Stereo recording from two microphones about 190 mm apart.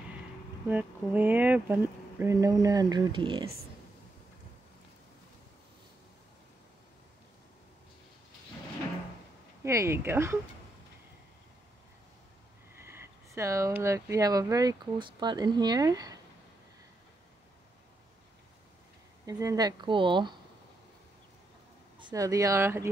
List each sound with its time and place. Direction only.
0.7 s speech: 10° right (ahead or behind); by 3.4 s 25° right (ahead or behind)
9.6 s speech: 15° right (ahead or behind)
12.7 s speech: 15° right (ahead or behind)
19.2 s speech: 20° right (ahead or behind)
21.9 s speech: 20° right (ahead or behind)